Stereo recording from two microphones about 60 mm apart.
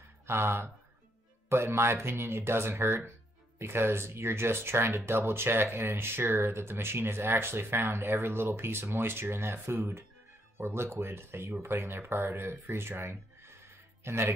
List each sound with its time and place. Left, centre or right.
0.3 s speech: right